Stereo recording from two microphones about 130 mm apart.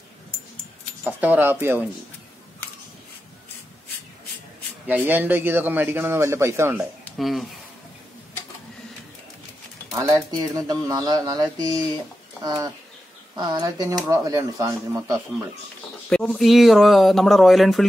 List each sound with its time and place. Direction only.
1.0 s a man's voice: 10° right (ahead or behind)
4.8 s a man's voice: 15° right (ahead or behind)
7.2 s speech: centre (ahead or behind)
9.9 s speech: 25° right (ahead or behind)
13.4 s speech: 30° right (ahead or behind)
16.1 s speech: 5° left (ahead or behind)